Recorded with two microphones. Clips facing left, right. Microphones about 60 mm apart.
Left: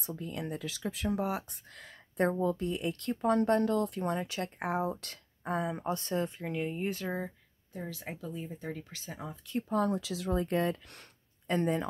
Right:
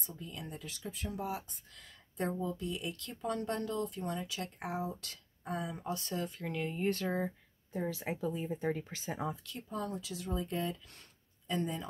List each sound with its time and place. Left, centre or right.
0.0 s speech: left
6.4 s speech: centre
7.8 s speech: centre
9.6 s speech: left